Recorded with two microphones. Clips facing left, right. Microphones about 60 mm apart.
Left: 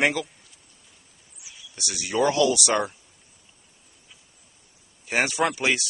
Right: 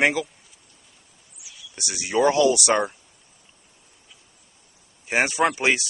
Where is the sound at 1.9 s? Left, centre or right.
Centre.